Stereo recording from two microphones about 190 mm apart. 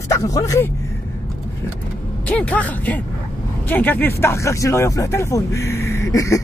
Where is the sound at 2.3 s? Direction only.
5° left (ahead or behind).